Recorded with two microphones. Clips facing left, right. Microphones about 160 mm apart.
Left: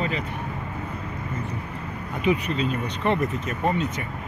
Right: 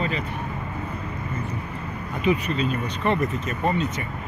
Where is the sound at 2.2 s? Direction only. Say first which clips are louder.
Even; 15° left (ahead or behind).